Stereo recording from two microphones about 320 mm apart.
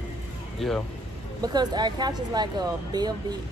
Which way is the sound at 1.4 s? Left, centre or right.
Centre.